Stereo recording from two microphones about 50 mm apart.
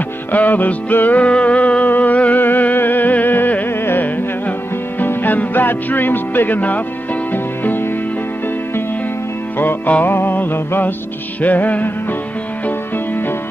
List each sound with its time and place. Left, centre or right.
0.3 s music: left
1.2 s music: left
10.0 s music: left